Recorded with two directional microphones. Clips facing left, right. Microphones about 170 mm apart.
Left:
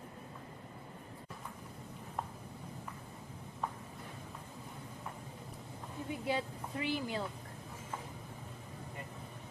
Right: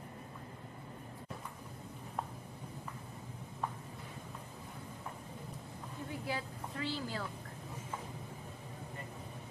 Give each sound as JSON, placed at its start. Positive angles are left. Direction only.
{"t": 6.0, "sound": "speech", "side_deg": 20}